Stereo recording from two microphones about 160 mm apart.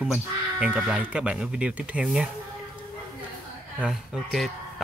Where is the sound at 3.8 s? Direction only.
5° right (ahead or behind).